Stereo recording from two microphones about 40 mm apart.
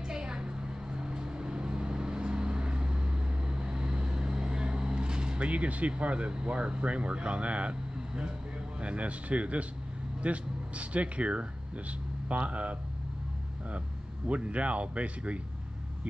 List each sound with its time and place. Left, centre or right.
0.1 s vehicle: centre
5.4 s speech: right
8.8 s speech: right